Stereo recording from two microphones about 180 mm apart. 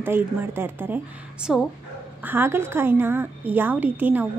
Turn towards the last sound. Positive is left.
turn(degrees=-10)  # may be behind; listen again after turning